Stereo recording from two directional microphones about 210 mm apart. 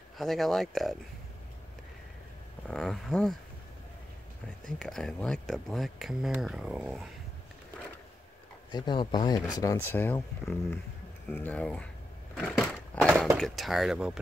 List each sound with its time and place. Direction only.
0.2 s speech: centre (ahead or behind)
2.7 s speech: centre (ahead or behind)
4.6 s speech: 5° left (ahead or behind)
8.7 s speech: 20° left (ahead or behind); by 11.9 s 5° left (ahead or behind)
12.4 s skateboard: centre (ahead or behind)
13.4 s speech: centre (ahead or behind)